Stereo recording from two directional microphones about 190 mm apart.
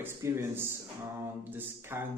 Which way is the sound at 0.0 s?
15° right (ahead or behind).